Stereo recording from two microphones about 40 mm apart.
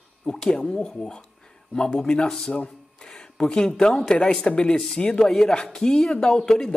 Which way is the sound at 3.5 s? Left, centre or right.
Centre.